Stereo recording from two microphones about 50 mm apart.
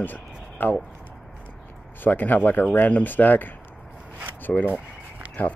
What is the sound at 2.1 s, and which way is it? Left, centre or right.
Speech, left.